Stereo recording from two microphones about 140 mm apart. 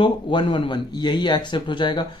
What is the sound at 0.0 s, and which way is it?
A man's voice, 35° left (ahead or behind).